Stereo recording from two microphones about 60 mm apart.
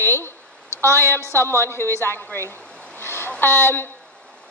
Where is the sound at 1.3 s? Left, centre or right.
Left.